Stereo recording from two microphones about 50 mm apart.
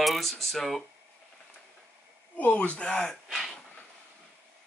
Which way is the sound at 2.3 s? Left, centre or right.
Left.